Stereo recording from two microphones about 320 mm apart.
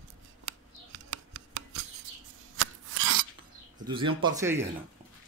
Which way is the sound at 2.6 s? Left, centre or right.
Right.